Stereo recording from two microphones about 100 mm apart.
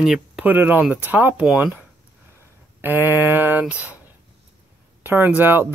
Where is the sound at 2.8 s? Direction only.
20° right (ahead or behind).